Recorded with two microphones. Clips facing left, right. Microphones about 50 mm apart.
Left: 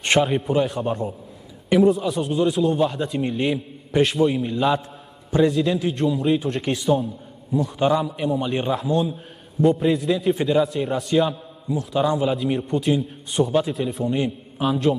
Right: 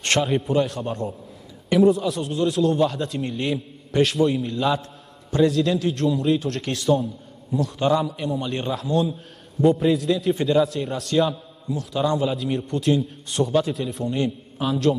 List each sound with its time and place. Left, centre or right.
0.0 s a sound: centre
0.3 s a man's voice: centre
8.7 s a man's voice: centre